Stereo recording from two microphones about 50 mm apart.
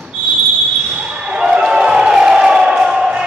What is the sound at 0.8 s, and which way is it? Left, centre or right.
Basketball bounce, centre.